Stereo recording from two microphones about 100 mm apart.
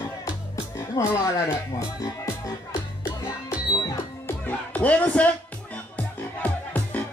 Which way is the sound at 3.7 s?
40° left (ahead or behind).